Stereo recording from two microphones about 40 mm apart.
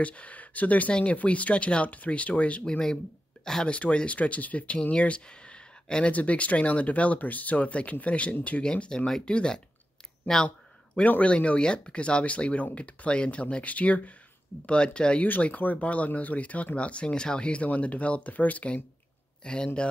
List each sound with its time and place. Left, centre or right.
0.0 s speech: left
3.6 s speech: left
6.1 s speech: left
8.6 s speech: left
10.3 s speech: centre
11.2 s speech: left
14.7 s speech: left
15.4 s speech: left
19.4 s speech: left